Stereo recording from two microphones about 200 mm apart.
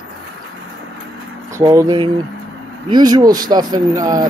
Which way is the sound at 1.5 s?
15° right (ahead or behind).